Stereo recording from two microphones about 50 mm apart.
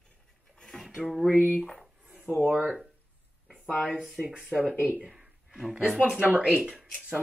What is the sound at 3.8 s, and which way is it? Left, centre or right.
Speech, centre.